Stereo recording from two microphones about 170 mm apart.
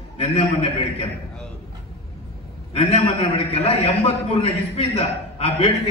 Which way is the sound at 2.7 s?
35° left (ahead or behind).